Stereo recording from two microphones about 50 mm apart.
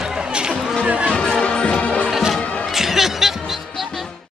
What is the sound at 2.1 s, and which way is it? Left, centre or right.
Music, centre.